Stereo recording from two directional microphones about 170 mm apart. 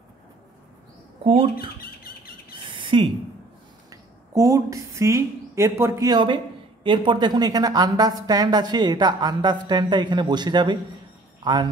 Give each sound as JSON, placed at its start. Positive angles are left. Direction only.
{"t": 1.2, "sound": "speech", "side_deg": -35}
{"t": 2.5, "sound": "bird", "side_deg": -30}
{"t": 3.9, "sound": "speech", "side_deg": -20}